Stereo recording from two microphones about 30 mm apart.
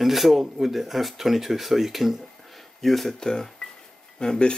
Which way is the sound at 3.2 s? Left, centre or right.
Centre.